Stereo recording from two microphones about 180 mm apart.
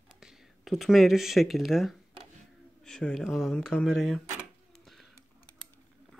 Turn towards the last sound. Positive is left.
turn(degrees=0)  # may be behind; listen again after turning